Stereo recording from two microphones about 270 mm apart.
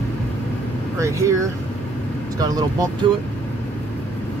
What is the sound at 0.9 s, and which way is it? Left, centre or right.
Speech, centre.